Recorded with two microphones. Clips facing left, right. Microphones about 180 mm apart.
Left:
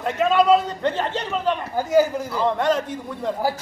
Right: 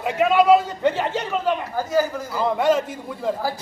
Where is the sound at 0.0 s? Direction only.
5° right (ahead or behind).